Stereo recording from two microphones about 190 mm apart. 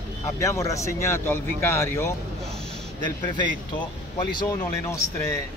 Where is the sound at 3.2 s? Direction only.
25° left (ahead or behind).